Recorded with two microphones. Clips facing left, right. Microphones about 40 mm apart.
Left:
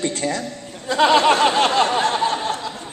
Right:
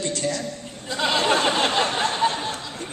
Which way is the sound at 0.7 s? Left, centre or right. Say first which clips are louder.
Left 9 dB; left.